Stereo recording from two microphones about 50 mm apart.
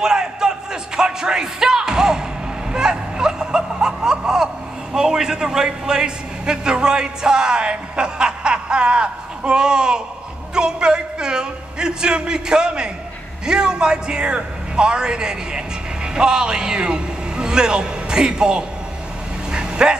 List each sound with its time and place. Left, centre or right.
0.0 s music: centre
2.7 s snicker: centre
4.9 s a sound: centre
13.5 s a man's voice: centre
19.5 s dog: centre